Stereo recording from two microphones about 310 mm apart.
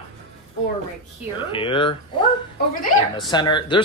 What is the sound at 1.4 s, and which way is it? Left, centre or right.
A man's voice, centre.